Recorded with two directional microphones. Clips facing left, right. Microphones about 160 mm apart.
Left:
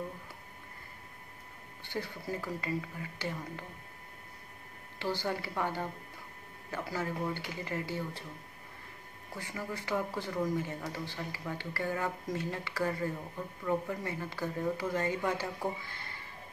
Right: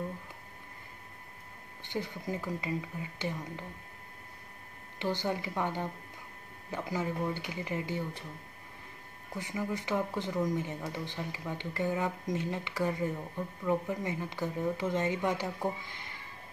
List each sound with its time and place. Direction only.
1.8 s speech: 20° right (ahead or behind)
4.9 s speech: 20° right (ahead or behind)
9.4 s speech: 15° right (ahead or behind)